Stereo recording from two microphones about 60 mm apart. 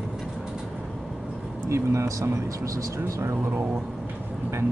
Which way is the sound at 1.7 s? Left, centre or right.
Right.